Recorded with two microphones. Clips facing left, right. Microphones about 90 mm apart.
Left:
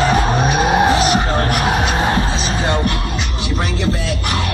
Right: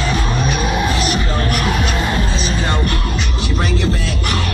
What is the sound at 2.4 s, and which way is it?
Music, 20° left (ahead or behind).